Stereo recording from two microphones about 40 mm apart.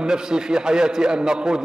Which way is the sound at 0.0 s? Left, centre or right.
Centre.